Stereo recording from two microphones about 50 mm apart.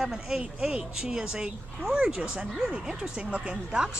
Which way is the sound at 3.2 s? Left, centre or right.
Right.